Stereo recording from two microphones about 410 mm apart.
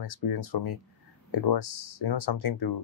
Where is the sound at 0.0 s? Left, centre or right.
Left.